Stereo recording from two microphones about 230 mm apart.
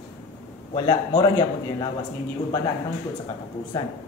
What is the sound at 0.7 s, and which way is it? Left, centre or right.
Speech, centre.